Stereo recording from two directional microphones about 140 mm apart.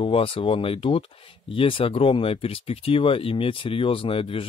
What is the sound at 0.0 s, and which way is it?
Speech, 40° left (ahead or behind).